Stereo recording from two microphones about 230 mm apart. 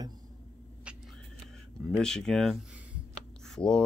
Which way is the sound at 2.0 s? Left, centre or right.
Centre.